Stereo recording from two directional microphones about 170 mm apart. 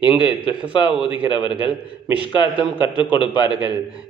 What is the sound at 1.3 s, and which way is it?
Speech, 25° left (ahead or behind).